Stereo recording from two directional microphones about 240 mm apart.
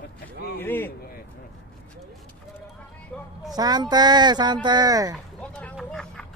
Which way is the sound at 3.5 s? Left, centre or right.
Centre.